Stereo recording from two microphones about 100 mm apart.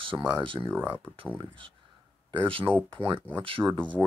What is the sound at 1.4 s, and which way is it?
Speech, 55° right (ahead or behind).